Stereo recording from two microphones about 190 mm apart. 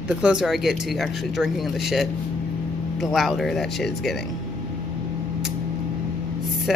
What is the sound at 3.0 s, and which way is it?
Speech, centre (ahead or behind).